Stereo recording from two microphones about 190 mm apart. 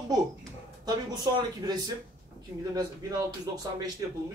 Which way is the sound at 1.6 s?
20° right (ahead or behind).